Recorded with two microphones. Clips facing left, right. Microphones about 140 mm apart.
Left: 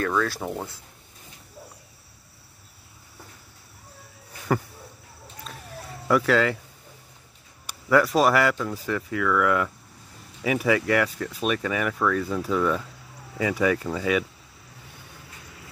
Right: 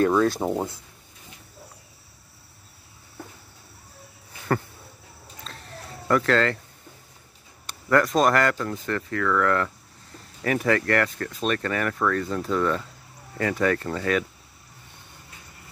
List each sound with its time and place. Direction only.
0.0 s speech: 25° right (ahead or behind)
4.5 s speech: 10° left (ahead or behind)
5.4 s a sound: 10° left (ahead or behind)
7.6 s speech: 5° left (ahead or behind)